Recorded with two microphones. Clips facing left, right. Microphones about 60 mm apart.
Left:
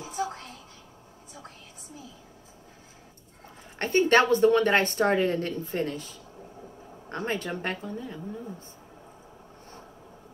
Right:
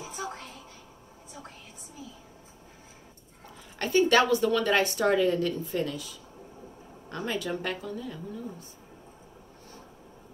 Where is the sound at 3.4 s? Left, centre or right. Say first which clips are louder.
Left 1 dB; left.